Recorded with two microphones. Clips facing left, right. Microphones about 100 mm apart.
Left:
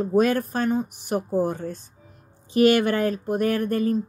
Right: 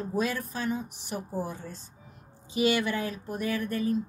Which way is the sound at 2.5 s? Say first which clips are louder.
Left 8 dB; 55° left (ahead or behind).